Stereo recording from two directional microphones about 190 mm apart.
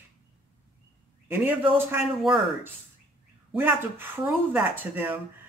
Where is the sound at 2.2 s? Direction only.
Centre (ahead or behind).